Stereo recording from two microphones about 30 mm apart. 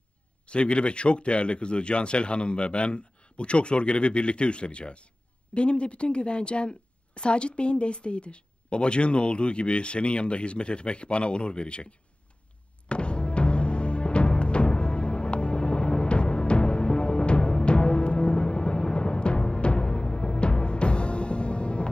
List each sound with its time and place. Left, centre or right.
0.5 s speech: left
12.8 s music: left